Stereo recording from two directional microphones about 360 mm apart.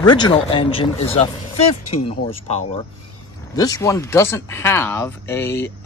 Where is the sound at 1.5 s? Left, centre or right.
Left.